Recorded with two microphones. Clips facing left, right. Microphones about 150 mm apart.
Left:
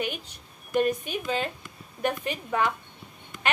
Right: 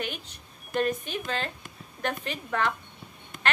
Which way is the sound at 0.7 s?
10° left (ahead or behind).